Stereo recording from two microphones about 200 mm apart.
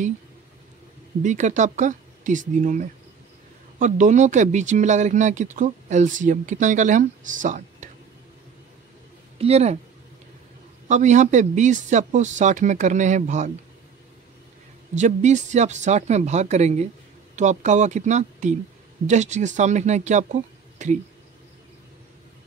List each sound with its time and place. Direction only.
1.2 s speech: 35° right (ahead or behind)
9.4 s speech: 30° right (ahead or behind)
10.9 s speech: 35° right (ahead or behind)
15.0 s speech: 35° right (ahead or behind)